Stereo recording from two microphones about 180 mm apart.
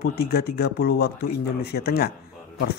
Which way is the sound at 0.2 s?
60° left (ahead or behind).